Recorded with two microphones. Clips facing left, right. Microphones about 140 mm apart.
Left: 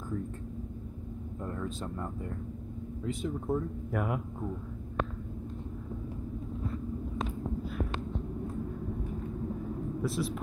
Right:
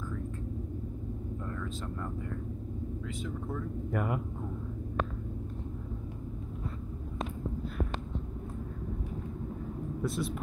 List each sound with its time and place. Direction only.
1.4 s vehicle: 25° left (ahead or behind)
3.1 s speech: 30° left (ahead or behind)
3.9 s speech: centre (ahead or behind)
10.0 s speech: centre (ahead or behind)